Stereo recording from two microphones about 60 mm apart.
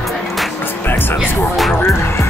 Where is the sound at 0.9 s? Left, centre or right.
Left.